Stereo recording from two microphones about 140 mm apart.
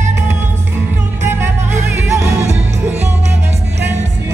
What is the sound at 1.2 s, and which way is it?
Music, 15° right (ahead or behind).